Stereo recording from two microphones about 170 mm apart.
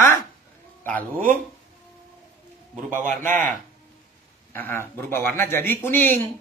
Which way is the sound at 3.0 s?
50° right (ahead or behind).